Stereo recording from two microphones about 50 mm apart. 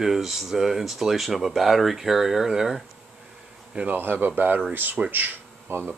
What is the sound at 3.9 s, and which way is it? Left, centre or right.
Speech, right.